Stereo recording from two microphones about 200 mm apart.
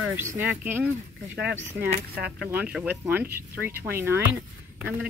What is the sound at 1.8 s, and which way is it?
Speech, 50° right (ahead or behind).